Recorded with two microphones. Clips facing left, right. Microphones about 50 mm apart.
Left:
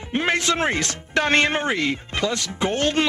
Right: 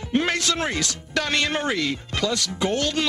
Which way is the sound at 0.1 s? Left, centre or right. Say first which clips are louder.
Left 1 dB; left.